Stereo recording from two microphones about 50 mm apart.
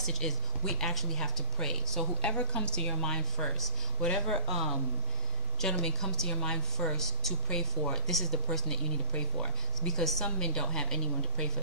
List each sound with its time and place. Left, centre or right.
0.0 s a woman's voice: centre
2.2 s a woman's voice: centre
9.8 s a woman's voice: centre